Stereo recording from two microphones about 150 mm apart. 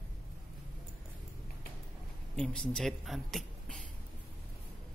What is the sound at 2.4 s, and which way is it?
Speech, 5° left (ahead or behind).